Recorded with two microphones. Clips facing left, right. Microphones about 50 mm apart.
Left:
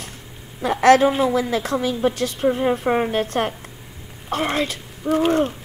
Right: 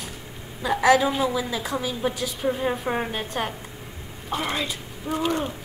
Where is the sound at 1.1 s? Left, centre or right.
Left.